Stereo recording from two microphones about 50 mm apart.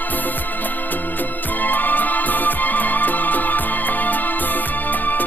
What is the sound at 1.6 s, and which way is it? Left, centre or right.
Music, left.